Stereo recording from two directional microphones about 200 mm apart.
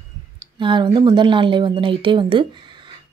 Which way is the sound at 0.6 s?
25° right (ahead or behind).